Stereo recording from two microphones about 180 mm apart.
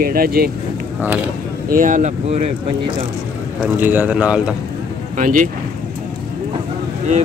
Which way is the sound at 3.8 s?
10° right (ahead or behind).